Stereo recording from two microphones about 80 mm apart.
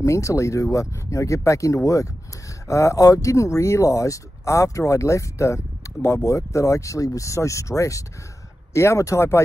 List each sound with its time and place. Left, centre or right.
0.0 s speech: left